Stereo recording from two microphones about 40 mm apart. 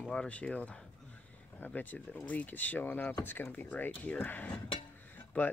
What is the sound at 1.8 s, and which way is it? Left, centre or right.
Speech, left.